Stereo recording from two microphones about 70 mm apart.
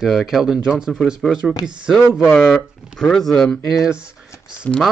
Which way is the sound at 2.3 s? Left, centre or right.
Centre.